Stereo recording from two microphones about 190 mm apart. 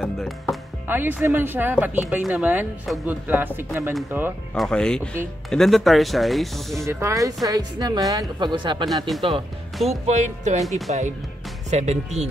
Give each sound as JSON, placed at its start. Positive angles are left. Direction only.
{"t": 0.0, "sound": "speech", "side_deg": 0}
{"t": 0.8, "sound": "speech", "side_deg": -10}
{"t": 4.6, "sound": "speech", "side_deg": 5}
{"t": 6.9, "sound": "speech", "side_deg": -15}
{"t": 8.8, "sound": "speech", "side_deg": 0}
{"t": 10.0, "sound": "speech", "side_deg": -35}